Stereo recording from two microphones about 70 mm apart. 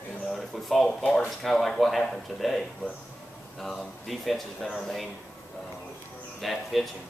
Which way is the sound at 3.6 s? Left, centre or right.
Centre.